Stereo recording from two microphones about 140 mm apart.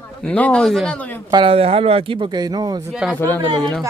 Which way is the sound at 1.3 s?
40° right (ahead or behind).